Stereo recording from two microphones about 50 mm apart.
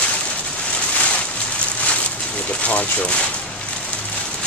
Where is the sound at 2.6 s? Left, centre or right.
Left.